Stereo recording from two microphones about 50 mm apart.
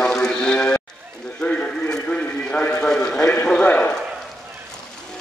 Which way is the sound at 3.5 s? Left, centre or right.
Left.